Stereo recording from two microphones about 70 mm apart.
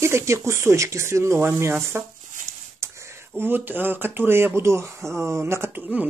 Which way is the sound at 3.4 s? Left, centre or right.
Right.